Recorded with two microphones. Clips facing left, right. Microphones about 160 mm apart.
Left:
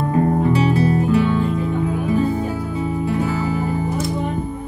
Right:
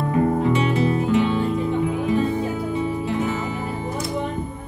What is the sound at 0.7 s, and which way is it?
Music, 20° right (ahead or behind).